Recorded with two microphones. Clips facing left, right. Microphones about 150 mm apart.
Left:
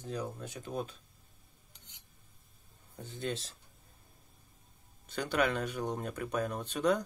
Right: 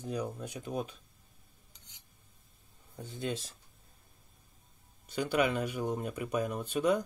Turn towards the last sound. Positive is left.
turn(degrees=-10)  # may be behind; listen again after turning